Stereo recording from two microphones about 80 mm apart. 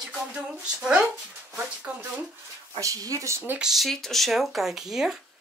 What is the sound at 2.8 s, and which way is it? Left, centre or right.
Speech, right.